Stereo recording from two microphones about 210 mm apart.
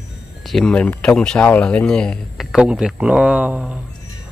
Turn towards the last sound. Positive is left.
turn(degrees=-5)  # may be behind; listen again after turning